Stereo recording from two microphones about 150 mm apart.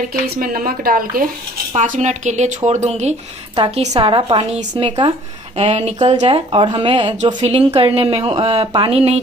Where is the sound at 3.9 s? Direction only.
35° right (ahead or behind).